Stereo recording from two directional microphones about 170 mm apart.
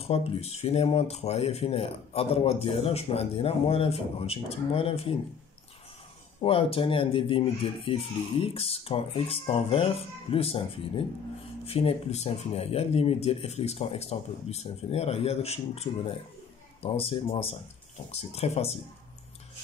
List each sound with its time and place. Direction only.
0.0 s speech: 35° left (ahead or behind)
6.4 s speech: 35° left (ahead or behind)